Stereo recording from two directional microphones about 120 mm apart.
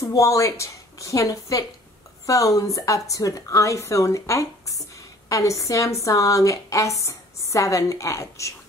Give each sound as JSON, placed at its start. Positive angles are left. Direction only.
{"t": 0.0, "sound": "a woman's voice", "side_deg": 25}